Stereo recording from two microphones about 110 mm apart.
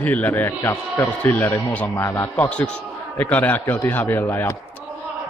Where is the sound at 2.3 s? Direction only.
10° left (ahead or behind).